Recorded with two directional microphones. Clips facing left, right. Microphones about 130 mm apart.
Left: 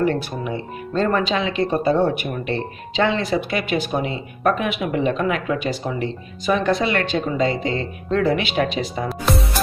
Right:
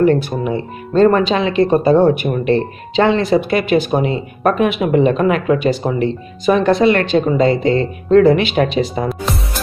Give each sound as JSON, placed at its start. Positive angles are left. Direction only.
{"t": 0.0, "sound": "speech", "side_deg": -45}